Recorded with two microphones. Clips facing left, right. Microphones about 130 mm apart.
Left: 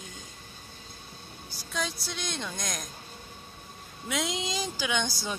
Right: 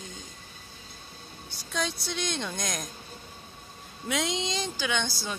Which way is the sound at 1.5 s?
Centre (ahead or behind).